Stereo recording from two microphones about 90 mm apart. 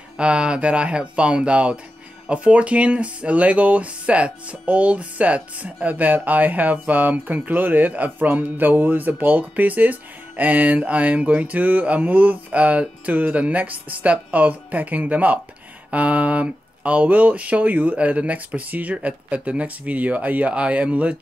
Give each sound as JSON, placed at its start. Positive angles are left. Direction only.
{"t": 0.2, "sound": "speech", "side_deg": -10}